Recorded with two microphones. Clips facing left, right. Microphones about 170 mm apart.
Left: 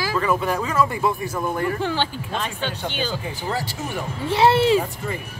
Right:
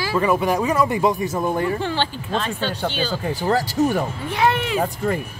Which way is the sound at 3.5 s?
45° right (ahead or behind).